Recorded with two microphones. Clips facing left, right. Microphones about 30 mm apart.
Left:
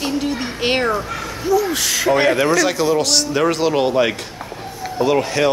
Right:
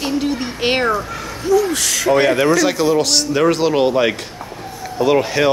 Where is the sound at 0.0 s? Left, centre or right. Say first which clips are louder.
Right 1 dB; centre.